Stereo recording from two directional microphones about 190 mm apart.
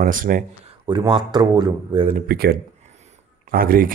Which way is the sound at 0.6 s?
25° right (ahead or behind).